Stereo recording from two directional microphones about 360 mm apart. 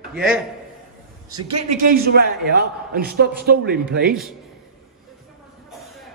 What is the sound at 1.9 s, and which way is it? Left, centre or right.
A man's voice, right.